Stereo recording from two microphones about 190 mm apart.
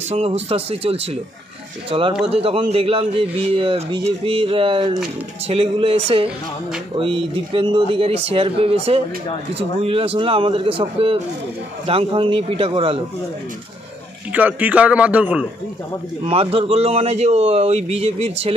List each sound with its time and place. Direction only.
0.1 s a man's voice: 35° right (ahead or behind)
14.3 s a man's voice: 10° right (ahead or behind)
16.3 s a man's voice: 30° right (ahead or behind)